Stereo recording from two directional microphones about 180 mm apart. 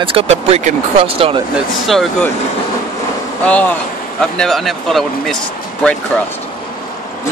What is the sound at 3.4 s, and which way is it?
Speech, 10° left (ahead or behind).